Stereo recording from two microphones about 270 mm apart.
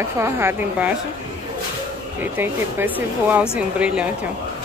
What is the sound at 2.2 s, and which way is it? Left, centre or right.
A woman's voice, centre.